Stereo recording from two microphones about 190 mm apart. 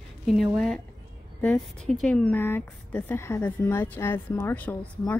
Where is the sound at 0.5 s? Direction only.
5° left (ahead or behind).